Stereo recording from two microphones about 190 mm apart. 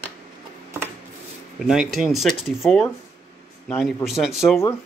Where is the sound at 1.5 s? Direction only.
Centre (ahead or behind).